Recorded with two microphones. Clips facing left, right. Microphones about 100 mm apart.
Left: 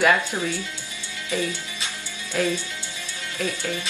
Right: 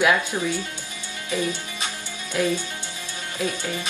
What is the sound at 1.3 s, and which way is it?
Speech, 15° right (ahead or behind).